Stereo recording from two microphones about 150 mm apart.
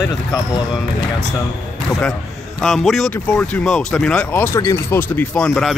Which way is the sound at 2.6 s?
Centre (ahead or behind).